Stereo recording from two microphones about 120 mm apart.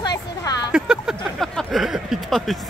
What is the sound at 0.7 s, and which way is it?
Speech, 10° right (ahead or behind).